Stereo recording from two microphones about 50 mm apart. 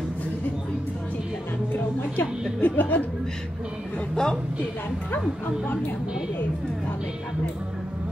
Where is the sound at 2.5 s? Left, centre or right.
Left.